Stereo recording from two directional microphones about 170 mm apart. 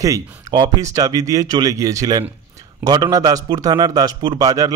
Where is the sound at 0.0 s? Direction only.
20° right (ahead or behind).